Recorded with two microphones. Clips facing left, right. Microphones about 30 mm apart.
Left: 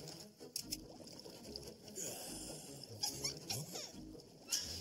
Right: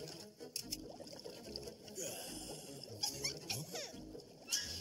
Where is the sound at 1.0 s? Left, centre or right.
Centre.